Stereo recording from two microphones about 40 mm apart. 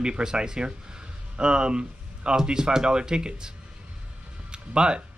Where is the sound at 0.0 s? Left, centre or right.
Centre.